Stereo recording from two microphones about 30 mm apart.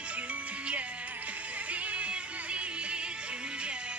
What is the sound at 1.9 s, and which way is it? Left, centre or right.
Music, right.